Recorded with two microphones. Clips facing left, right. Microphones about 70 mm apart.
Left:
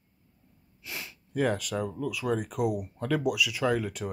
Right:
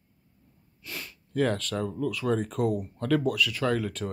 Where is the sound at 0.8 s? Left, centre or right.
Centre.